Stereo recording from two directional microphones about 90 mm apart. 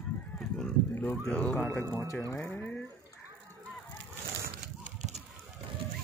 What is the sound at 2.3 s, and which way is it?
Speech, 30° left (ahead or behind).